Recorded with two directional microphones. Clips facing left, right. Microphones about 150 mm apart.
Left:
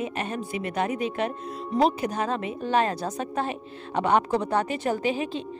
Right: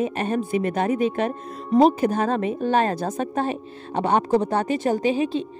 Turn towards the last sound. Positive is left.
turn(degrees=-25)  # may be behind; listen again after turning